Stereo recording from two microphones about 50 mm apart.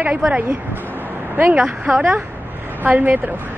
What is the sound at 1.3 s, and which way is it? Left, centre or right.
A woman's voice, right.